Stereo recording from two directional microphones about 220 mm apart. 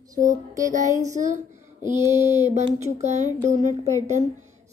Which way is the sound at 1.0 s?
35° right (ahead or behind).